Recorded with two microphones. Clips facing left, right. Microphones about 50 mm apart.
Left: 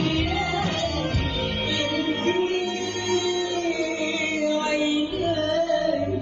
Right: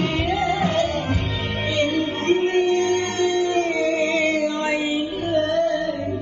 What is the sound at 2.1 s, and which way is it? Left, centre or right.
Music, right.